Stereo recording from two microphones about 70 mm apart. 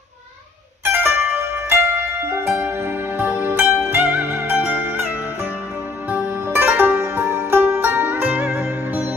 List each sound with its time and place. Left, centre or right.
0.8 s pizzicato: right
6.0 s music: right